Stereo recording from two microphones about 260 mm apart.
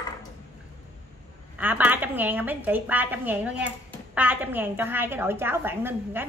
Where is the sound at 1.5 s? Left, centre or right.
Centre.